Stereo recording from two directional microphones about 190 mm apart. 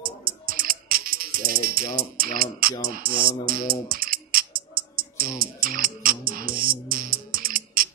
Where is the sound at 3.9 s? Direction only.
50° right (ahead or behind).